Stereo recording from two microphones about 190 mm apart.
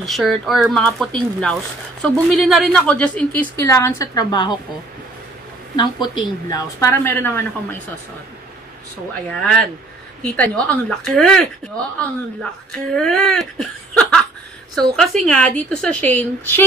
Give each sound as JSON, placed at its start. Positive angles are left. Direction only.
{"t": 0.0, "sound": "speech", "side_deg": 0}
{"t": 3.5, "sound": "a woman's voice", "side_deg": 15}
{"t": 5.8, "sound": "a woman's voice", "side_deg": 25}
{"t": 9.3, "sound": "a woman's voice", "side_deg": 5}